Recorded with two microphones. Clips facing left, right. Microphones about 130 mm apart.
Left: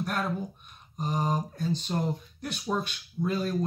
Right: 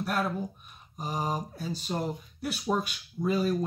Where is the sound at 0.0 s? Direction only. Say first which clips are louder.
Right 1 dB; centre (ahead or behind).